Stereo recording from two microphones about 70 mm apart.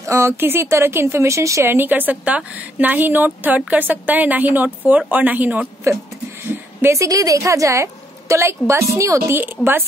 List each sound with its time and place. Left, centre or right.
0.0 s speech: right
1.7 s a woman's voice: right
6.4 s a sound: right
7.0 s a woman's voice: right
9.4 s speech: right